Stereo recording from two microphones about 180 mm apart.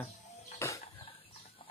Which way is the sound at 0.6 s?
15° left (ahead or behind).